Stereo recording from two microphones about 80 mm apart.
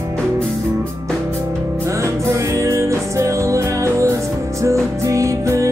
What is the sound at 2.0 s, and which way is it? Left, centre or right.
Music, right.